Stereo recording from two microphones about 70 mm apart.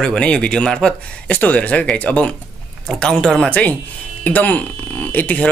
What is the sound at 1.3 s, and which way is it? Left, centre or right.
Speech, centre.